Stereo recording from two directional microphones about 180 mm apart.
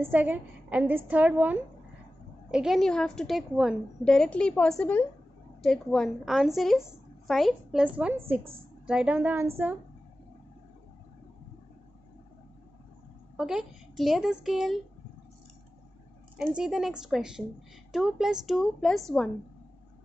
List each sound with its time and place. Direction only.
0.0 s a woman's voice: 10° right (ahead or behind)
13.4 s a woman's voice: 5° right (ahead or behind)
16.3 s a woman's voice: 5° right (ahead or behind)